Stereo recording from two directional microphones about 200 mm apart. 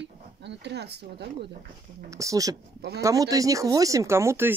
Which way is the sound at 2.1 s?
15° right (ahead or behind).